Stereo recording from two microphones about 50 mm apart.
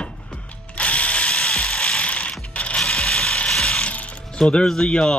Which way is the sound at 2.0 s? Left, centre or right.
Left.